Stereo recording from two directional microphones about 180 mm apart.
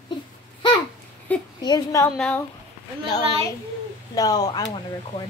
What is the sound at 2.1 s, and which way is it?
Speech, 5° left (ahead or behind).